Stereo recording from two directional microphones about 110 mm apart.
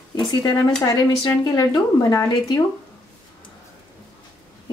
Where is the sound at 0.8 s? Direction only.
35° left (ahead or behind).